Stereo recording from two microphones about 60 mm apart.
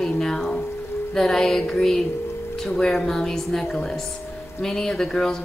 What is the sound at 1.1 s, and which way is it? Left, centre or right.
Speech, centre.